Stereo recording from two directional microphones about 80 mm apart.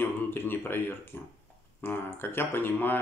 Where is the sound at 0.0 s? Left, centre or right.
Left.